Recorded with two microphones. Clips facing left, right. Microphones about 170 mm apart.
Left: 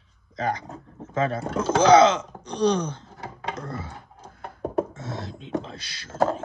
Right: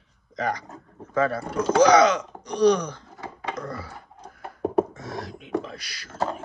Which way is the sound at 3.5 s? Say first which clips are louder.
Right 1 dB; 25° left (ahead or behind).